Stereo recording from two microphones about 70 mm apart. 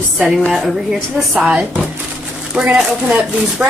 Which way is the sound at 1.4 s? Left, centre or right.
Centre.